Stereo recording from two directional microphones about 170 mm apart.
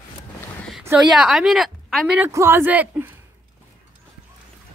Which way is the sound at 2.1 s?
10° right (ahead or behind).